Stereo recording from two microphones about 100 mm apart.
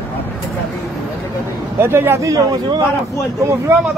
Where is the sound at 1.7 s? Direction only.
20° right (ahead or behind).